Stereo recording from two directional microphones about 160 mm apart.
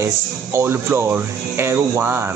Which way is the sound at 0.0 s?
15° right (ahead or behind).